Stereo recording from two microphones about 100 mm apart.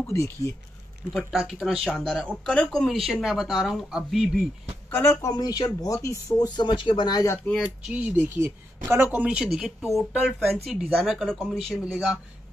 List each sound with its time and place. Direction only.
1.1 s speech: centre (ahead or behind)
4.9 s speech: 25° left (ahead or behind)
5.3 s speech: 45° left (ahead or behind)
6.4 s speech: 50° left (ahead or behind)
7.4 s speech: 10° left (ahead or behind)
7.9 s speech: 20° right (ahead or behind)
9.5 s speech: 5° right (ahead or behind)